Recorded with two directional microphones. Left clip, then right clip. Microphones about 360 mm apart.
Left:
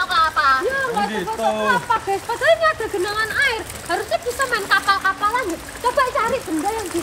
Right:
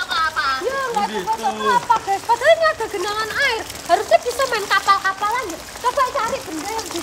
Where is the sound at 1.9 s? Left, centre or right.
Centre.